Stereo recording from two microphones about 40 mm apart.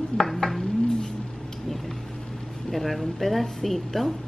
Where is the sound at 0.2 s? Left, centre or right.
Centre.